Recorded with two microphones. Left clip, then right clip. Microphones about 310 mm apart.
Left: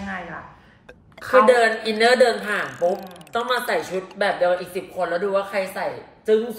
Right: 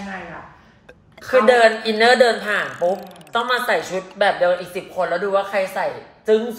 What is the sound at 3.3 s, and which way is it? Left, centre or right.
A woman's voice, centre.